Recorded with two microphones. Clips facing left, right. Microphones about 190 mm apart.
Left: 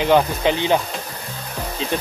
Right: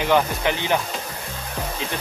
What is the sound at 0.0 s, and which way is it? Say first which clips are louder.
Speech: left 4 dB; 20° left (ahead or behind).